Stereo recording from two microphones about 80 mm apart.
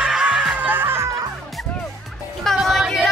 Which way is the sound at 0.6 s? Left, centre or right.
Right.